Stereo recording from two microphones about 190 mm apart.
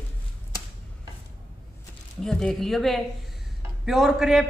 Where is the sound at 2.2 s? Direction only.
5° left (ahead or behind).